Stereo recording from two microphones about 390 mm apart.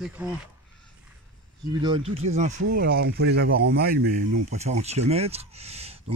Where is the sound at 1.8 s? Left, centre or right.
Centre.